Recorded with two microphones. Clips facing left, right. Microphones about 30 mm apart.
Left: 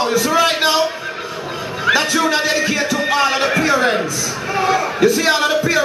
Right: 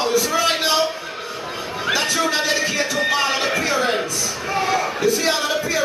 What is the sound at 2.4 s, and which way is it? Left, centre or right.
Speech, centre.